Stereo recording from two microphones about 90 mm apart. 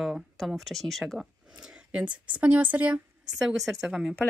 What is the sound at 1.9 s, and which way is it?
A woman's voice, 15° right (ahead or behind).